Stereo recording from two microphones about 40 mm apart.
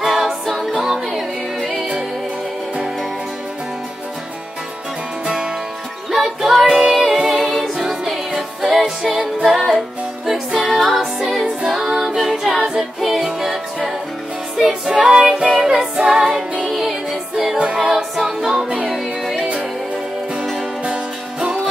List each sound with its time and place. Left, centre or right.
0.0 s music: centre
1.6 s music: centre
5.2 s music: right
6.1 s music: centre
7.2 s a capella: centre
7.8 s music: centre
9.1 s music: centre
9.6 s music: centre
11.9 s music: centre
14.9 s music: centre
16.6 s music: centre
17.7 s a capella: centre
18.7 s music: right
20.8 s music: right